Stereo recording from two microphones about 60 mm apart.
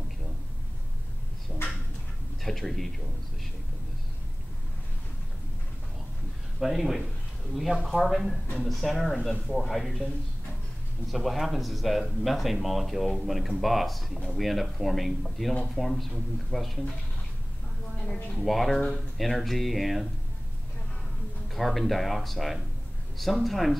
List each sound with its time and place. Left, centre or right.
1.5 s a sound: centre
2.4 s speech: centre
6.6 s speech: centre
11.1 s speech: centre
18.0 s speech: centre
18.4 s speech: centre
21.5 s speech: centre